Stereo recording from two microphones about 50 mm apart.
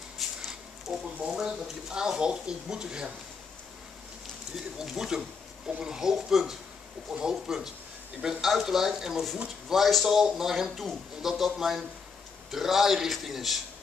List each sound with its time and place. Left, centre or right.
0.2 s a sound: centre
0.9 s speech: centre
4.8 s speech: centre